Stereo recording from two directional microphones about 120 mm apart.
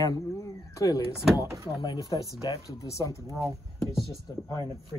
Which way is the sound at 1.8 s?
35° left (ahead or behind).